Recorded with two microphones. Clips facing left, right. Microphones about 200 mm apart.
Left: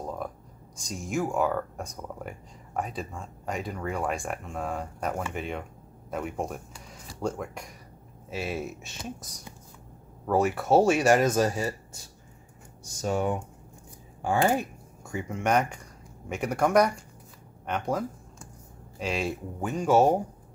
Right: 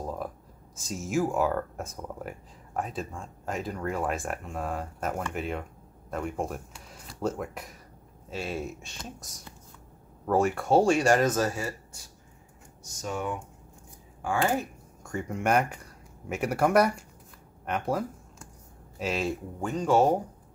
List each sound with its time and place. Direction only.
0.0 s a sound: 5° right (ahead or behind)
0.7 s speech: 5° right (ahead or behind); by 11.7 s 15° left (ahead or behind)
13.0 s speech: 35° left (ahead or behind)
15.0 s speech: centre (ahead or behind)